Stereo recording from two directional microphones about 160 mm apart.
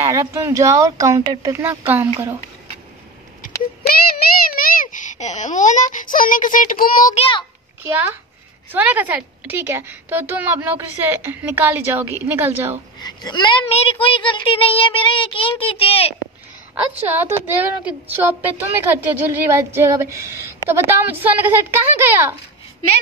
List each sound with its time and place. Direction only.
0.0 s speech: 20° right (ahead or behind)
3.8 s a child's voice: 65° left (ahead or behind)
7.2 s child singing: 35° left (ahead or behind)
7.8 s a woman's voice: 10° right (ahead or behind)
13.0 s a child's voice: 25° left (ahead or behind)
13.7 s child singing: 40° left (ahead or behind)
17.1 s a woman's voice: 10° right (ahead or behind)